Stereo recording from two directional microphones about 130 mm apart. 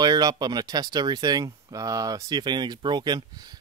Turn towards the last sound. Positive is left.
turn(degrees=-35)  # may be behind; listen again after turning